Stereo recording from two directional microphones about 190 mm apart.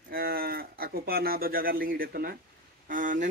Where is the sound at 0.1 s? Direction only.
50° right (ahead or behind).